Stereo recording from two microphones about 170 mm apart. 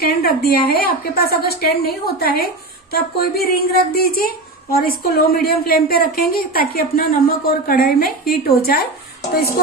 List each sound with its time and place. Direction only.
0.0 s a woman's voice: 65° left (ahead or behind)